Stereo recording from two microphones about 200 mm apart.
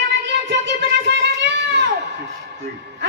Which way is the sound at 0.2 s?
60° right (ahead or behind).